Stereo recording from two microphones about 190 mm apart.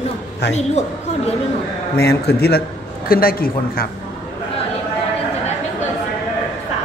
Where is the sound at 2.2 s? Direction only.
55° left (ahead or behind).